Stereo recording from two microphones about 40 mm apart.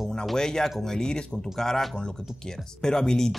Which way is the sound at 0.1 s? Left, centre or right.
Centre.